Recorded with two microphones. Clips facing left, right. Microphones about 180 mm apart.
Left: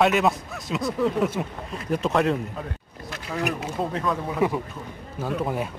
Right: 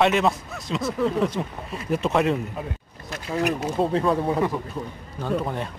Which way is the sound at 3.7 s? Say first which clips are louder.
Right 7 dB; 30° right (ahead or behind).